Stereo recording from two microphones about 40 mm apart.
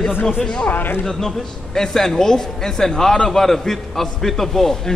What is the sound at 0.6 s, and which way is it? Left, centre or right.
Speech, left.